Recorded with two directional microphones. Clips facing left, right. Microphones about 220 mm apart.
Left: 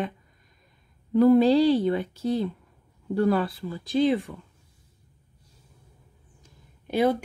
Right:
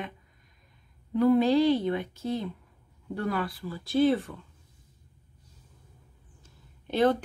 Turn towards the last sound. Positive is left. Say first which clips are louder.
# left 1 dB
turn(degrees=10)  # may be behind; listen again after turning